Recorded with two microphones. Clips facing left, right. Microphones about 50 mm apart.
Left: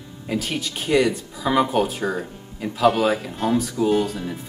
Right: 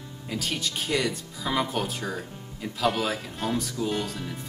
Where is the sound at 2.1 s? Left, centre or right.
Centre.